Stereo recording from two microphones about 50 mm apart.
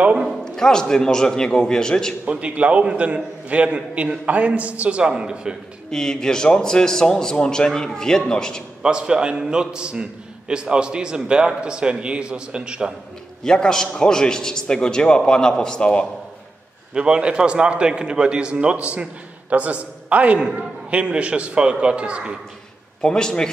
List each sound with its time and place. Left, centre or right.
0.5 s a man's voice: centre
2.2 s a man's voice: right
5.9 s a man's voice: centre
8.8 s a man's voice: centre
13.4 s a man's voice: centre
16.9 s a man's voice: centre
23.0 s a man's voice: centre